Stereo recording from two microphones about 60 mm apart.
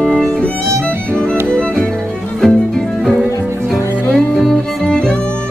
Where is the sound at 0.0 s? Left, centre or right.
Centre.